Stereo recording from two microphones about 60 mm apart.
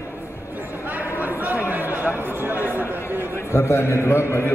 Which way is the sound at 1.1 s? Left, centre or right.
Right.